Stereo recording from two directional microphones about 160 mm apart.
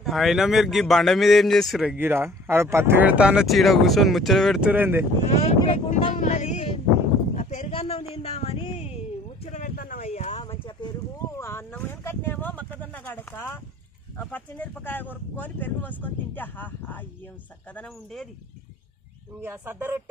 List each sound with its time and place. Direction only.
0.0 s speech: centre (ahead or behind)
2.0 s speech: 15° right (ahead or behind)
5.3 s speech: 40° left (ahead or behind)
6.1 s a sound: 45° left (ahead or behind)
10.4 s a sound: 30° left (ahead or behind)
11.3 s vehicle: 15° left (ahead or behind)
14.1 s speech: 10° left (ahead or behind)
19.4 s speech: 15° right (ahead or behind)